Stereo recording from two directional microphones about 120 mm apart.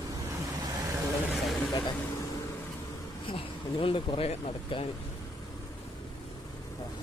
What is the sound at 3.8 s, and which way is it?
Speech, 50° left (ahead or behind).